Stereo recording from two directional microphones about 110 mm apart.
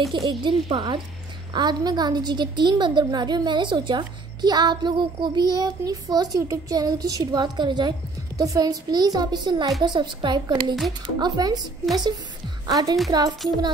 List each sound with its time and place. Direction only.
0.1 s a woman's voice: 45° right (ahead or behind)
12.6 s a woman's voice: 35° right (ahead or behind)